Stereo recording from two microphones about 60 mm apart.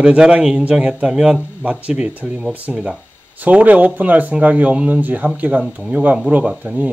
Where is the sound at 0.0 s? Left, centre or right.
Centre.